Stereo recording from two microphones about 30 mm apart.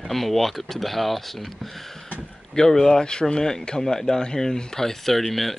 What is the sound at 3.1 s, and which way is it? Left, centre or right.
Speech, left.